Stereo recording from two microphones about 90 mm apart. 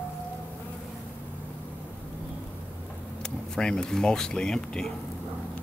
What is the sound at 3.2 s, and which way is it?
Speech, 10° left (ahead or behind).